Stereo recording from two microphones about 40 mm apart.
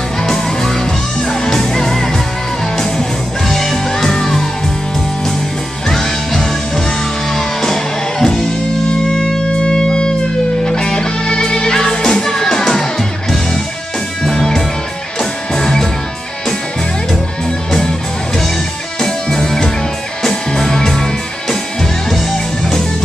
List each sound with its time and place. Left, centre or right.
0.2 s music: centre
5.9 s music: centre
14.2 s music: centre
17.8 s music: centre